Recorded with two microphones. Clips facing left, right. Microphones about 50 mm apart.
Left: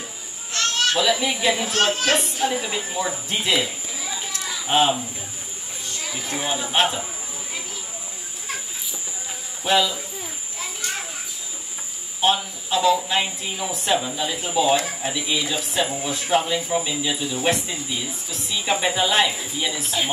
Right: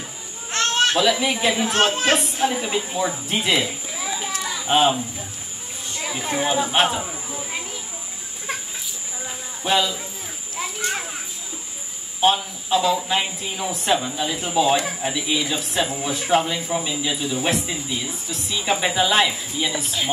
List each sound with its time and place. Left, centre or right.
0.5 s children playing: right
0.9 s a child's voice: centre
5.9 s a sound: centre
6.3 s speech: centre
9.7 s speech: centre
10.8 s children playing: centre
12.2 s speech: centre